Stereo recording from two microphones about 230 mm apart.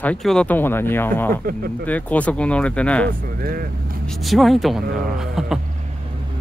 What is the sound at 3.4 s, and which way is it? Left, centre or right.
Speech, right.